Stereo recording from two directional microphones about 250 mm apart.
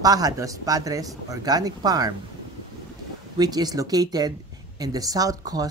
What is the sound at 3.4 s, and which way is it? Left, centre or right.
Speech, centre.